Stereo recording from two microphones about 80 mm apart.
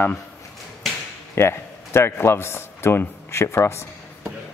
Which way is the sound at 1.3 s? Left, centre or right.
Left.